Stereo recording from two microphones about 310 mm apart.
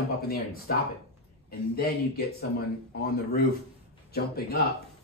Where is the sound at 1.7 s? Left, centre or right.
Left.